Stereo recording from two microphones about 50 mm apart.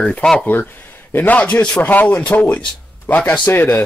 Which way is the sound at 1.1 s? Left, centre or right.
Left.